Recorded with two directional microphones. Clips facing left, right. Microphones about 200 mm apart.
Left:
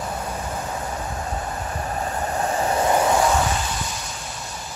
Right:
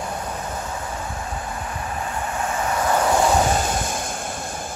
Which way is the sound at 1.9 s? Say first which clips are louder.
Left 2 dB; 40° left (ahead or behind).